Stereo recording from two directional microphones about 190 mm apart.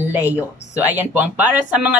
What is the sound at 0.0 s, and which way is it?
Speech, 10° right (ahead or behind).